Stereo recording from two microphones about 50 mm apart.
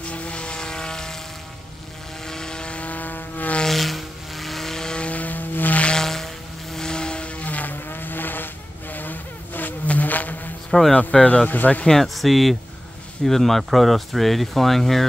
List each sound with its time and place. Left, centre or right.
0.0 s vehicle: left
2.2 s vehicle: centre; by 3.5 s left
3.6 s vehicle: centre
5.0 s vehicle: left
5.9 s vehicle: centre; by 10.5 s left
10.7 s speech: centre
11.0 s speech: left
11.8 s speech: centre